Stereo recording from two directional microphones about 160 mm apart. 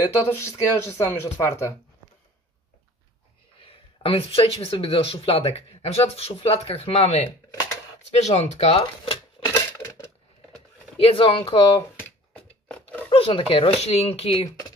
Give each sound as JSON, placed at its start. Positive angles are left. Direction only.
{"t": 0.0, "sound": "speech", "side_deg": 20}
{"t": 3.6, "sound": "speech", "side_deg": 35}
{"t": 11.0, "sound": "speech", "side_deg": 35}
{"t": 12.6, "sound": "a sound", "side_deg": 5}
{"t": 13.1, "sound": "speech", "side_deg": 35}